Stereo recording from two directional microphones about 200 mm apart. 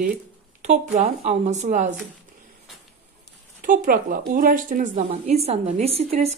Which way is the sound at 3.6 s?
45° right (ahead or behind).